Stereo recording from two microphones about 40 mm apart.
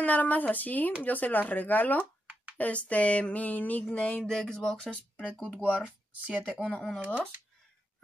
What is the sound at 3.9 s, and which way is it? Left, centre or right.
Speech, left.